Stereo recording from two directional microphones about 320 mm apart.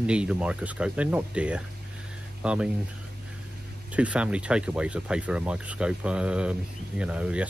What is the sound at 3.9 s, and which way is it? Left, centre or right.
Speech, centre.